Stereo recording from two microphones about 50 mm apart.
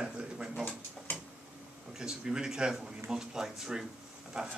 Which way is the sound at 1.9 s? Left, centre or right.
Centre.